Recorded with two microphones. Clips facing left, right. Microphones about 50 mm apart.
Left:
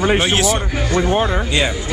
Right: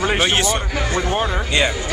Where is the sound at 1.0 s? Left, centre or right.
Left.